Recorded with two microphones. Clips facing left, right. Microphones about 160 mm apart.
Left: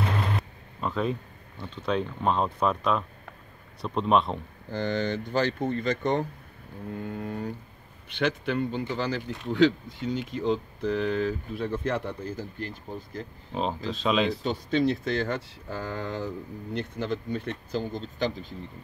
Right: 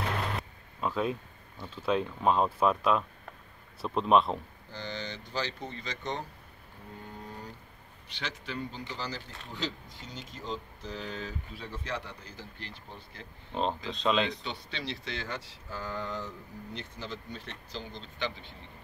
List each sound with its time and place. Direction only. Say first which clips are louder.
0.4 s a sound: left 1 dB; centre (ahead or behind)
1.6 s speech: left 1 dB; 5° right (ahead or behind)
4.6 s speech: left 11 dB; 55° left (ahead or behind)
7.1 s a sound: left 10 dB; 65° left (ahead or behind)
8.1 s a man's voice: left 12 dB; 55° left (ahead or behind)
13.5 s speech: left 2 dB; 5° left (ahead or behind)
14.4 s speech: left 14 dB; 45° left (ahead or behind)